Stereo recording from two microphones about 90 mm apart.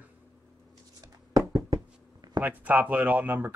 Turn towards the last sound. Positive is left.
turn(degrees=-20)  # may be behind; listen again after turning